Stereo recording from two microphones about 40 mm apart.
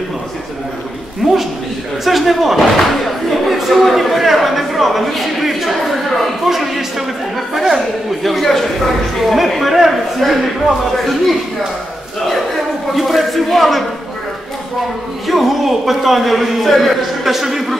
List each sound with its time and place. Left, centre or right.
2.0 s a man's voice: centre
12.9 s a man's voice: centre
15.2 s a man's voice: centre